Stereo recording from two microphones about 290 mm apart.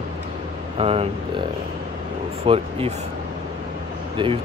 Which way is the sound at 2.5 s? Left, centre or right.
Centre.